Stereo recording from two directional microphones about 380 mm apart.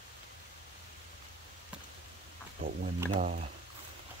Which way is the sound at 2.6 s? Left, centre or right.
Right.